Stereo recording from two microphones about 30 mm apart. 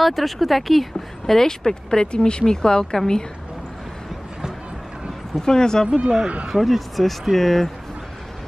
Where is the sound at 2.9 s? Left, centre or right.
Centre.